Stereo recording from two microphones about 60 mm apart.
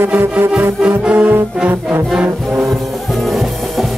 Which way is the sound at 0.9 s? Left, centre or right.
Right.